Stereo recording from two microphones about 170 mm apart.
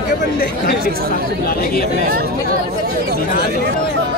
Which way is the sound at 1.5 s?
60° left (ahead or behind).